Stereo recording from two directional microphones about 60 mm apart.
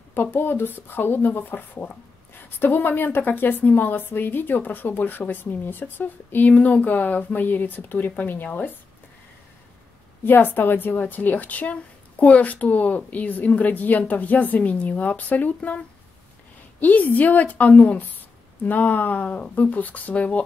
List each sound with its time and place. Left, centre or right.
0.1 s a woman's voice: left
10.2 s a woman's voice: left
16.8 s a woman's voice: left